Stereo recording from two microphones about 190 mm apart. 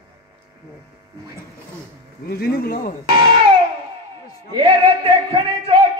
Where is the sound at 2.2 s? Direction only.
55° left (ahead or behind).